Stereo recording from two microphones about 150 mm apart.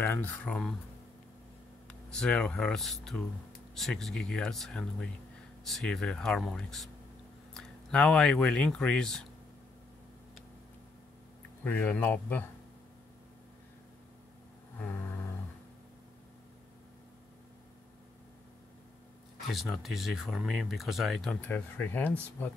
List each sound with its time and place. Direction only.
0.0 s speech: 10° left (ahead or behind)
1.9 s speech: 5° left (ahead or behind)
11.6 s speech: 10° left (ahead or behind)
14.8 s vehicle: 15° left (ahead or behind)
19.5 s speech: centre (ahead or behind)